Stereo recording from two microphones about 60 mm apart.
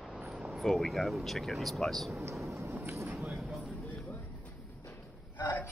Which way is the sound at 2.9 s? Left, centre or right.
Right.